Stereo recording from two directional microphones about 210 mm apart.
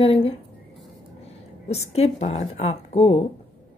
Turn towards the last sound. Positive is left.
turn(degrees=30)  # may be behind; listen again after turning